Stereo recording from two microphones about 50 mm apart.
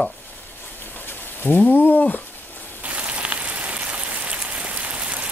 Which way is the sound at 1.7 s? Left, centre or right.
Left.